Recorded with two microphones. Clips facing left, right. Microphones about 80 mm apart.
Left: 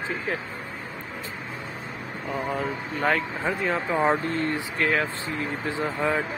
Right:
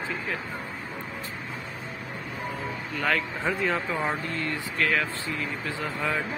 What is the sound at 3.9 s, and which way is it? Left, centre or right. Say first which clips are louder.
Speech: left 6 dB; left.